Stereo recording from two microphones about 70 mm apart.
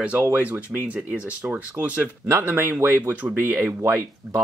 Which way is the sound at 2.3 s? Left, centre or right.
Right.